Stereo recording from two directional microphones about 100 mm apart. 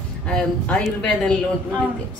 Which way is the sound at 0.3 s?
10° left (ahead or behind).